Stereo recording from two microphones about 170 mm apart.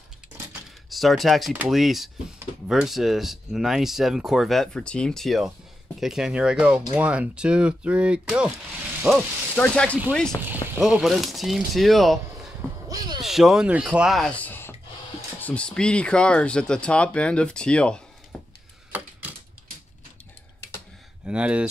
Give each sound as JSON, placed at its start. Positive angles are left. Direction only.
{"t": 0.5, "sound": "speech", "side_deg": 0}
{"t": 9.6, "sound": "speech", "side_deg": 10}
{"t": 10.5, "sound": "speech", "side_deg": -5}
{"t": 12.8, "sound": "a sound", "side_deg": -25}
{"t": 13.2, "sound": "speech", "side_deg": 0}
{"t": 18.9, "sound": "typewriter", "side_deg": -10}
{"t": 21.3, "sound": "speech", "side_deg": -5}